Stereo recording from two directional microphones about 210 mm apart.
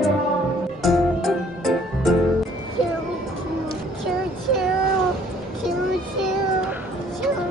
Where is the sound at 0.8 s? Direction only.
Centre (ahead or behind).